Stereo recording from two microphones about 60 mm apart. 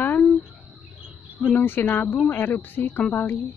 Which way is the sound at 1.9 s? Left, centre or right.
Left.